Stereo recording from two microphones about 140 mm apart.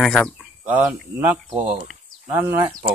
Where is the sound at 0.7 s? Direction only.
15° right (ahead or behind).